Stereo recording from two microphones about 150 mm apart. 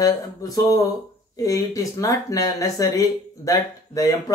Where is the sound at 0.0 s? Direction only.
25° left (ahead or behind).